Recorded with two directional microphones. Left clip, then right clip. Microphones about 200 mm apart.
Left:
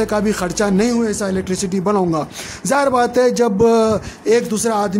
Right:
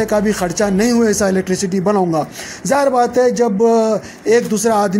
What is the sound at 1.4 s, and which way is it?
A man's voice, 5° left (ahead or behind).